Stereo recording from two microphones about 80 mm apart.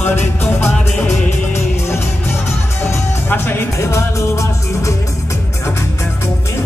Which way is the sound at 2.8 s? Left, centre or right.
Left.